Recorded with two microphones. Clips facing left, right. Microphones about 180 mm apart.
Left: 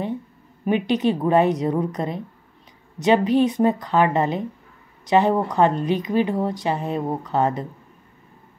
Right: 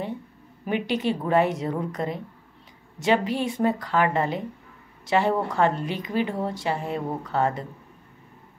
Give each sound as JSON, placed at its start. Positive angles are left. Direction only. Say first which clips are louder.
{"t": 0.7, "sound": "speech", "louder": "left 5 dB", "side_deg": 20}